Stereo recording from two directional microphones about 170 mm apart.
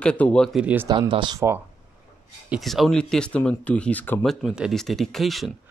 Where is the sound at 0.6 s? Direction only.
10° right (ahead or behind).